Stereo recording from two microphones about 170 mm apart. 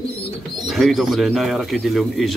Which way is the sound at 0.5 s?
Centre (ahead or behind).